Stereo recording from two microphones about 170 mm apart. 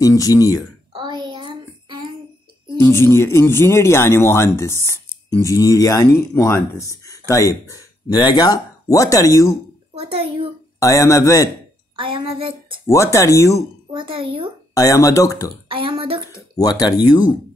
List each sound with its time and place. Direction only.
0.0 s speech: 20° left (ahead or behind)
0.9 s a sound: 25° right (ahead or behind)
2.8 s a man's voice: 15° left (ahead or behind)
9.9 s a child's voice: 35° right (ahead or behind)
10.8 s a man's voice: 20° left (ahead or behind)
12.0 s speech: 30° right (ahead or behind)
12.8 s a man's voice: 15° left (ahead or behind)
13.9 s a child's voice: 30° right (ahead or behind)
14.7 s speech: 20° left (ahead or behind)
15.7 s speech: 30° right (ahead or behind)
16.3 s speech: 20° left (ahead or behind)